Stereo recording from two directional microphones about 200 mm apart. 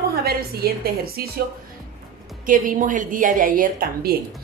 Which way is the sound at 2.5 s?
40° right (ahead or behind).